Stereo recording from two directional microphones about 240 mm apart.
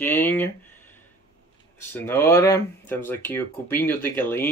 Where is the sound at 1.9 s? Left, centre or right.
Centre.